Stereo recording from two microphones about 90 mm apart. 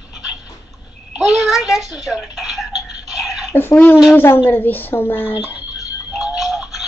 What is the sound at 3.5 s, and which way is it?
A woman's voice, 25° left (ahead or behind).